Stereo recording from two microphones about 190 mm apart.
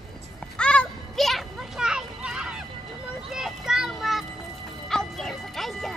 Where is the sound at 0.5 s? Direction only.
5° left (ahead or behind).